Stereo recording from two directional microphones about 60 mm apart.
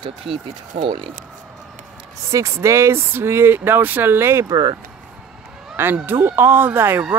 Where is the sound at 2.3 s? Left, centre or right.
Right.